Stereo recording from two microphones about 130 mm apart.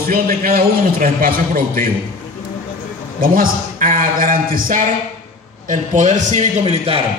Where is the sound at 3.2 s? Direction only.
90° right.